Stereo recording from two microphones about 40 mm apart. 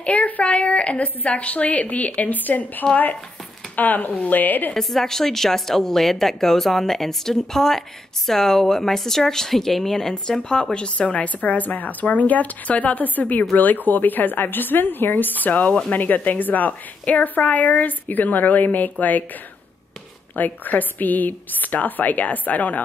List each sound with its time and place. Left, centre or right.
0.0 s a woman's voice: left
4.8 s a woman's voice: centre; by 19.2 s left
20.3 s a woman's voice: left